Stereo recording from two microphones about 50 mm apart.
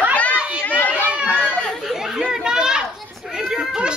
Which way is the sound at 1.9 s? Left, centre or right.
Centre.